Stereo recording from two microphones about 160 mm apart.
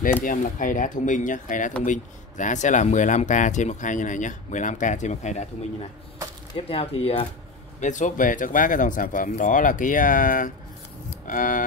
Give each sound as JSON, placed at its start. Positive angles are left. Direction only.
{"t": 0.2, "sound": "speech", "side_deg": 55}
{"t": 6.5, "sound": "speech", "side_deg": 35}
{"t": 7.8, "sound": "speech", "side_deg": 50}